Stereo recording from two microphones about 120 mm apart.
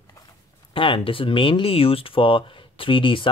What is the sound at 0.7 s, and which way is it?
Speech, 50° left (ahead or behind).